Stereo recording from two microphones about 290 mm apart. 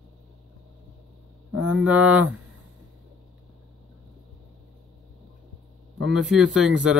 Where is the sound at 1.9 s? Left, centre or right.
Centre.